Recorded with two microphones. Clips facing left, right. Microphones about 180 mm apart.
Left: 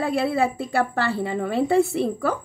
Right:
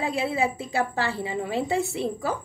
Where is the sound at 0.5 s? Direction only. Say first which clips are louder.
Left 3 dB; 55° left (ahead or behind).